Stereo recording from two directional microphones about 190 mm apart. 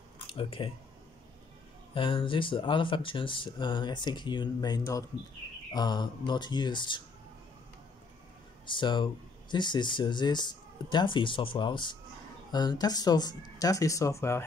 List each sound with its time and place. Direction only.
0.3 s speech: 30° left (ahead or behind)
2.0 s speech: 25° left (ahead or behind)
8.6 s speech: 25° left (ahead or behind)